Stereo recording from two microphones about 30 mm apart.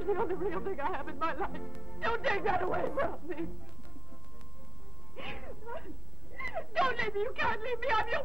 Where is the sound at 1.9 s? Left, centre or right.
Centre.